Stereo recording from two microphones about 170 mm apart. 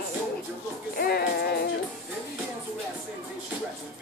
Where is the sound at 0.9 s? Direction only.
65° left (ahead or behind).